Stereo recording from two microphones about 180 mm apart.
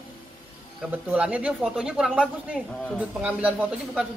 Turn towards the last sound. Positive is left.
turn(degrees=-5)  # may be behind; listen again after turning